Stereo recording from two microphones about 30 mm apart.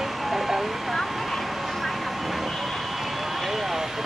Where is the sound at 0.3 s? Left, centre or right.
Centre.